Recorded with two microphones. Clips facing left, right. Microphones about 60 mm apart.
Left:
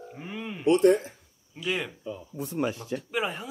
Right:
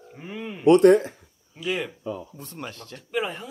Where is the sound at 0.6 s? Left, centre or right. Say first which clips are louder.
Right 6 dB; right.